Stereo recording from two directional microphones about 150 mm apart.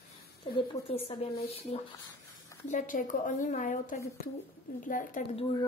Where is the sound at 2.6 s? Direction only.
60° left (ahead or behind).